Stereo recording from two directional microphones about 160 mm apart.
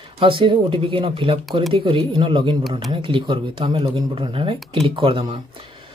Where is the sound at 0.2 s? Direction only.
30° right (ahead or behind).